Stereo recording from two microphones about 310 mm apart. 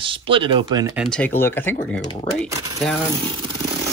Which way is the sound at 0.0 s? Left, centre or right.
Centre.